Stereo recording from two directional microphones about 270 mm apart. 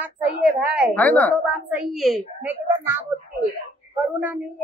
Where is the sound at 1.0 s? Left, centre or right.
Centre.